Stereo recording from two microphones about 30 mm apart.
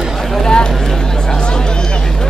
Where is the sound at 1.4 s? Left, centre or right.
Left.